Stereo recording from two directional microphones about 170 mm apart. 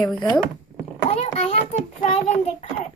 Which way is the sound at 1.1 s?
40° left (ahead or behind).